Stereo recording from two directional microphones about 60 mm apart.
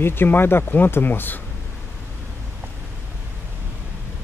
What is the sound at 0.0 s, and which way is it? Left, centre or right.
Speech, left.